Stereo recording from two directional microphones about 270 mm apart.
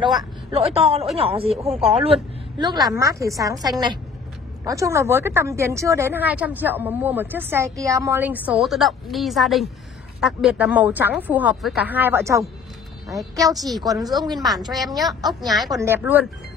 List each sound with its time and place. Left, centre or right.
0.0 s a woman's voice: centre
14.1 s a woman's voice: centre